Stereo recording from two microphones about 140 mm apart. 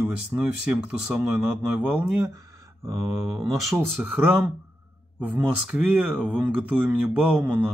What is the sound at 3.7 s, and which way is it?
Speech, 10° right (ahead or behind).